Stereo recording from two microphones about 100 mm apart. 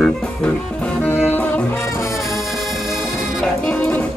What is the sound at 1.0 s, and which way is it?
Music, 20° left (ahead or behind).